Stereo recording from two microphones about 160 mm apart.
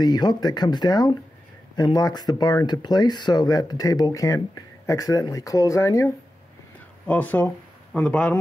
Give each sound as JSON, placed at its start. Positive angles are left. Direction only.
{"t": 0.0, "sound": "speech", "side_deg": 25}